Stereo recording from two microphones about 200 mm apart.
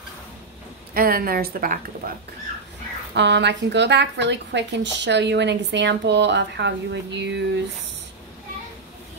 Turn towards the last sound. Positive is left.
turn(degrees=-60)  # may be behind; listen again after turning